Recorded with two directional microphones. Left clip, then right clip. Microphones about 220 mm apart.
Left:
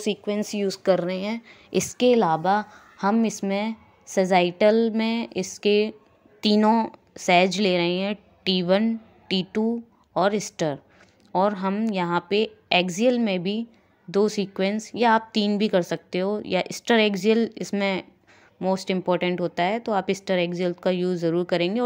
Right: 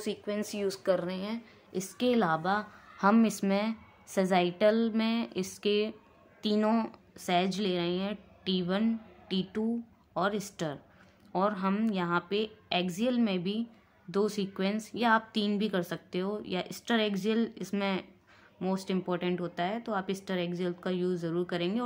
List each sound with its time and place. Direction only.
0.0 s a woman's voice: 20° left (ahead or behind)
2.0 s a woman's voice: 20° left (ahead or behind)